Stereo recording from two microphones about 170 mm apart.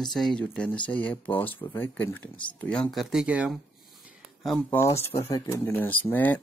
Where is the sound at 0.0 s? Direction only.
5° left (ahead or behind).